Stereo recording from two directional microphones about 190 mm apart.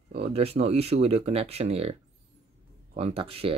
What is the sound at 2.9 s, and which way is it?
Speech, 30° right (ahead or behind).